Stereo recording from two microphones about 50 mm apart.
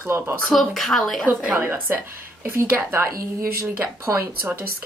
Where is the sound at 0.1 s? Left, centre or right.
Right.